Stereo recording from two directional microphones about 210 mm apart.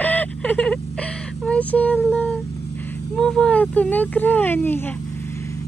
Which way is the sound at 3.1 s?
5° left (ahead or behind).